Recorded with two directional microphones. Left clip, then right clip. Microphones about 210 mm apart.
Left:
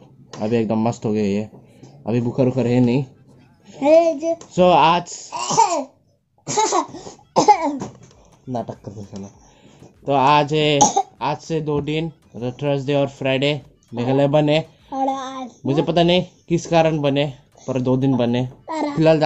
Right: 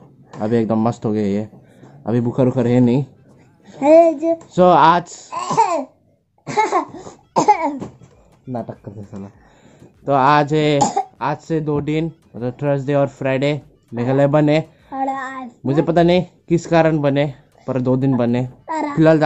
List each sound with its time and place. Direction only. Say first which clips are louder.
0.4 s speech: right 2 dB; 10° right (ahead or behind)
6.4 s laughter: right 2 dB; 30° right (ahead or behind)
7.3 s a sound: even; 15° left (ahead or behind)
8.5 s speech: left 1 dB; 5° right (ahead or behind)
10.0 s speech: right 1 dB; 10° right (ahead or behind)
14.9 s child singing: even; 15° left (ahead or behind)
15.6 s speech: right 2 dB; 10° right (ahead or behind)
18.7 s babbling: right 2 dB; 20° left (ahead or behind)
18.9 s speech: right 2 dB; 10° right (ahead or behind)